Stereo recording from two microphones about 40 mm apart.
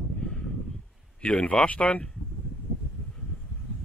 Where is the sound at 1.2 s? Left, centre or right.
Left.